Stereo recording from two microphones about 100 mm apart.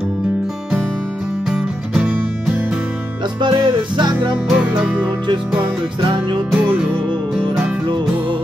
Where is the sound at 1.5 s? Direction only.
10° right (ahead or behind).